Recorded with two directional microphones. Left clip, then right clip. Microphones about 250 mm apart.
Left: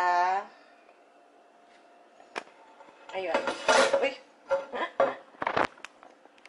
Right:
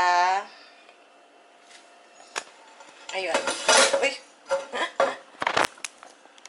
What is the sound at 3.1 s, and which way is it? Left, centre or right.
Dishes, centre.